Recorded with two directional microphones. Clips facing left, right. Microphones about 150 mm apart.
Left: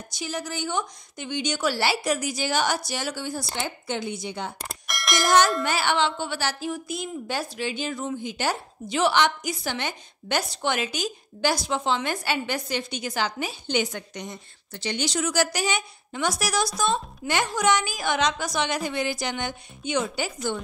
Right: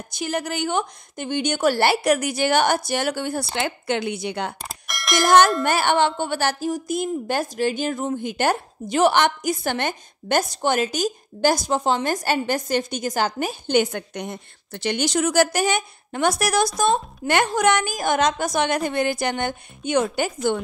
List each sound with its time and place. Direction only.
0.1 s a woman's voice: 55° right (ahead or behind)
4.6 s a sound: centre (ahead or behind)
5.2 s a woman's voice: 55° right (ahead or behind)